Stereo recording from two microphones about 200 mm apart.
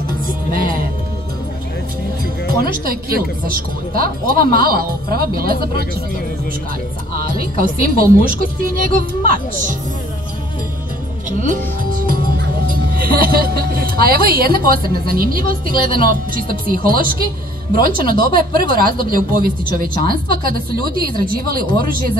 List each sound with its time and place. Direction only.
0.5 s speech: 45° right (ahead or behind)
2.4 s speech: 50° right (ahead or behind)
7.3 s speech: 45° right (ahead or behind)
11.2 s speech: 40° right (ahead or behind)